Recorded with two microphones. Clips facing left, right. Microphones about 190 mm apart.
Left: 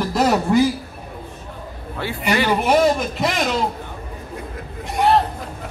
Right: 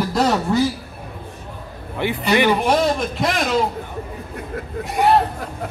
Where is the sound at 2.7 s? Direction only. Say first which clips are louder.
Left 2 dB; centre (ahead or behind).